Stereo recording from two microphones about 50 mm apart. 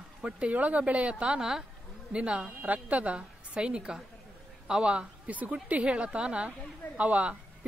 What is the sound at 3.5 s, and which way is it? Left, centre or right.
A woman's voice, centre.